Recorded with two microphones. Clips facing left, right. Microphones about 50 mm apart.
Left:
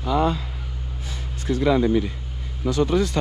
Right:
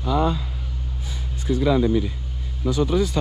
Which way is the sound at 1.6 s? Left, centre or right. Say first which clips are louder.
Left 1 dB; left.